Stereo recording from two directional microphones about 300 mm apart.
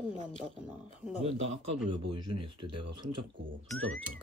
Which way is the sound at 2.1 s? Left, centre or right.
Centre.